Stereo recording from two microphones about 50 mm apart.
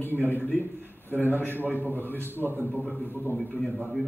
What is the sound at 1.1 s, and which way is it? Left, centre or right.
A man's voice, right.